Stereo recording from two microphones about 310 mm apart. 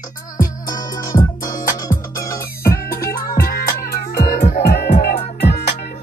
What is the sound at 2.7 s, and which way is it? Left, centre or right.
Music, left.